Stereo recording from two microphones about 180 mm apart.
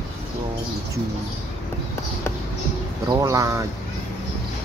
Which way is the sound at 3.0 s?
20° right (ahead or behind).